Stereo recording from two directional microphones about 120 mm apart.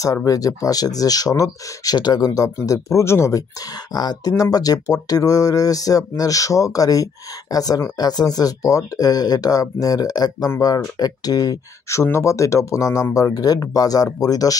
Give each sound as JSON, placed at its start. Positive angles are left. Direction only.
{"t": 0.0, "sound": "speech", "side_deg": 30}